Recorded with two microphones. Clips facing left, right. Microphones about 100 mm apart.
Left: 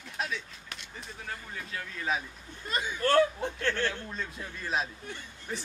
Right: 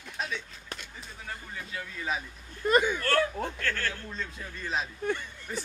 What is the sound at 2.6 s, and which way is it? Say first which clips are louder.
Speech: right 7 dB; 55° right (ahead or behind).